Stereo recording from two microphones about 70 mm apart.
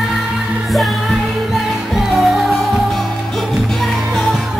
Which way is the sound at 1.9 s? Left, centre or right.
Centre.